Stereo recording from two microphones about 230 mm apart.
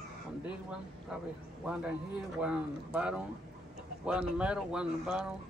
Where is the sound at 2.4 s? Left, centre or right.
Centre.